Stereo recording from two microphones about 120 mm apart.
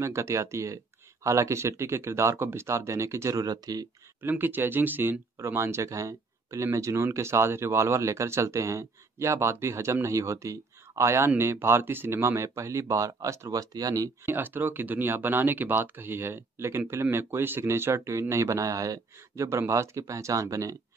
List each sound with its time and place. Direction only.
0.0 s speech: 25° right (ahead or behind)
4.2 s speech: 15° right (ahead or behind)
14.2 s speech: 15° right (ahead or behind)